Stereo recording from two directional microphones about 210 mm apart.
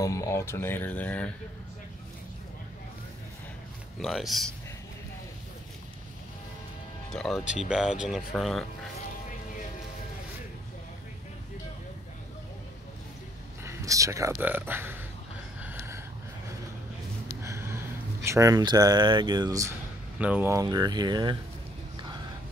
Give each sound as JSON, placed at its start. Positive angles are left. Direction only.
{"t": 0.0, "sound": "speech", "side_deg": 15}
{"t": 4.0, "sound": "speech", "side_deg": 0}
{"t": 7.1, "sound": "speech", "side_deg": 0}
{"t": 13.7, "sound": "speech", "side_deg": -15}
{"t": 15.6, "sound": "a sound", "side_deg": -10}
{"t": 17.4, "sound": "speech", "side_deg": -15}